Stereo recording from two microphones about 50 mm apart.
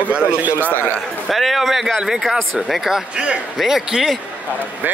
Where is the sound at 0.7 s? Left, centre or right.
Left.